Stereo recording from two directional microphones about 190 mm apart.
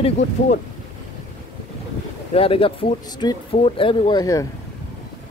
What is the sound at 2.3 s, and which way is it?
Speech, 30° left (ahead or behind).